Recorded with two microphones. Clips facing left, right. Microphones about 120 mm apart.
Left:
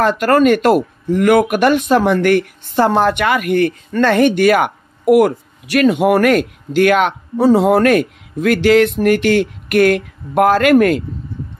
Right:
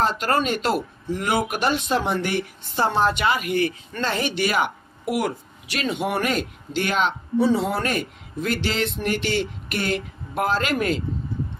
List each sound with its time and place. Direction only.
0.0 s speech: 55° left (ahead or behind)
7.6 s speech: 60° left (ahead or behind)